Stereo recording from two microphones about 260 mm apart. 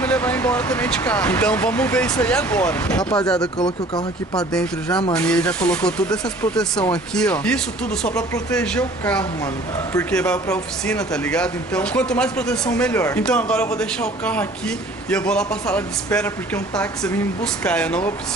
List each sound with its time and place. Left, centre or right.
0.0 s speech: centre
3.5 s speech: centre
5.1 s speech: centre
17.6 s speech: centre